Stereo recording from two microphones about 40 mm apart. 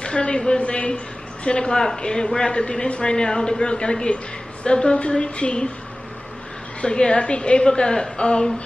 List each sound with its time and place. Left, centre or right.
0.0 s a woman's voice: left
6.8 s a man's voice: left